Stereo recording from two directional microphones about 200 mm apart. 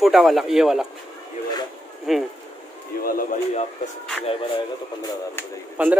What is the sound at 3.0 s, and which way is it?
Speech, 45° left (ahead or behind).